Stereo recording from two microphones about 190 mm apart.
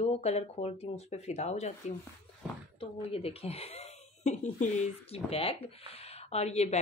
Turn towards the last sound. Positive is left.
turn(degrees=35)  # may be behind; listen again after turning